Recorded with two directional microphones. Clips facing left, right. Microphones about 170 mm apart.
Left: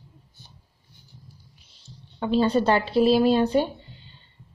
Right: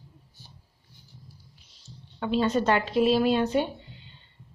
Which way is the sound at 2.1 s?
30° left (ahead or behind).